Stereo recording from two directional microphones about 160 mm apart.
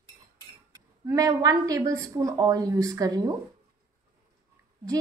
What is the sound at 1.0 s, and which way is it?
A woman's voice, 20° right (ahead or behind).